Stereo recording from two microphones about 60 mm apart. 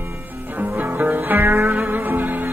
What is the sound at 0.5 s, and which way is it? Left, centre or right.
Music, right.